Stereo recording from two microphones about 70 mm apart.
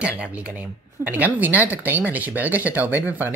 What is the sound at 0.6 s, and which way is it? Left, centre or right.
Speech, right.